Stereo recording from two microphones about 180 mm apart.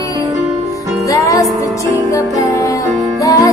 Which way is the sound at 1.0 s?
20° left (ahead or behind).